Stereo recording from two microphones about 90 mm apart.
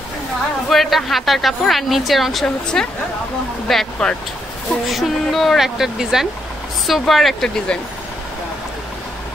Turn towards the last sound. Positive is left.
turn(degrees=5)  # may be behind; listen again after turning